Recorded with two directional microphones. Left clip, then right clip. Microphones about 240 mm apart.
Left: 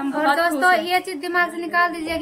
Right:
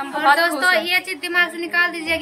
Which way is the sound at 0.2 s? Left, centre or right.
Centre.